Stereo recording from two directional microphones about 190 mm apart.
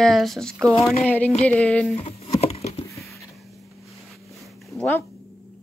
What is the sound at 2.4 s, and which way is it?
Patter, 35° left (ahead or behind).